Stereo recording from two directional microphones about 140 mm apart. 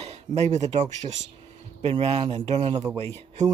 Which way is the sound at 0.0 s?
45° right (ahead or behind).